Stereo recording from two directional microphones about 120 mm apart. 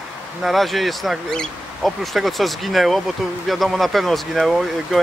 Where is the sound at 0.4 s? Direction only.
Centre (ahead or behind).